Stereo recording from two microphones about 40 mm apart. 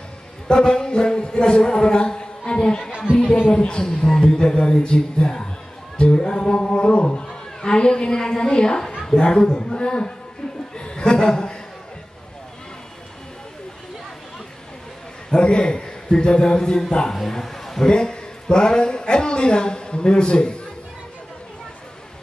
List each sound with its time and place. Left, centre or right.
0.5 s a man's voice: centre
10.8 s chuckle: left
15.3 s a man's voice: left; by 17.8 s centre
17.8 s a man's voice: left